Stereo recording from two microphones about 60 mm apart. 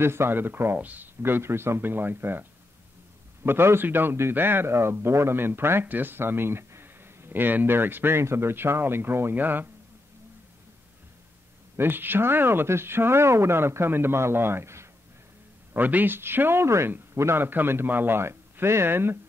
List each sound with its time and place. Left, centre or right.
0.0 s a man's voice: right
0.7 s speech: right
1.2 s a man's voice: right
3.4 s a man's voice: right
11.7 s a man's voice: right
15.7 s a man's voice: right